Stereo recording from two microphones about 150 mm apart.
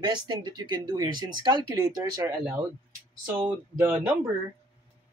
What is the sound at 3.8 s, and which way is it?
Speech, 15° right (ahead or behind).